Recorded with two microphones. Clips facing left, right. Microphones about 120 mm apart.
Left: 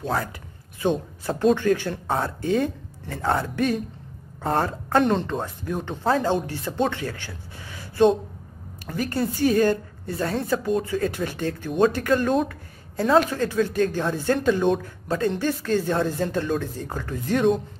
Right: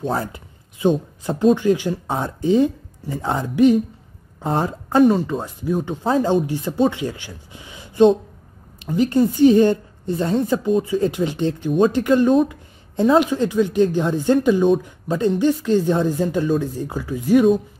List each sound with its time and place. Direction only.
0.0 s a sound: 25° right (ahead or behind)
1.4 s a woman's voice: 15° right (ahead or behind)
10.7 s speech: 5° right (ahead or behind)
11.0 s speech: 15° right (ahead or behind)
12.4 s a sound: 15° right (ahead or behind)
13.2 s speech: 15° right (ahead or behind)